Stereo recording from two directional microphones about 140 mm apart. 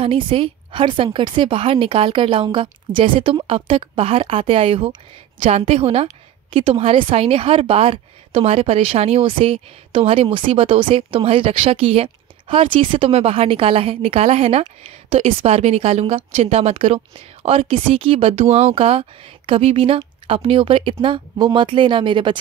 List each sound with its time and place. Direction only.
0.0 s a woman's voice: 40° right (ahead or behind)